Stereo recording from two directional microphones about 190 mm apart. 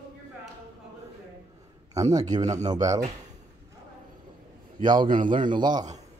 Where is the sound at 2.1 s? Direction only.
20° right (ahead or behind).